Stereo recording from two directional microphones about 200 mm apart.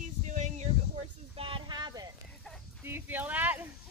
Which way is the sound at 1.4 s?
25° right (ahead or behind).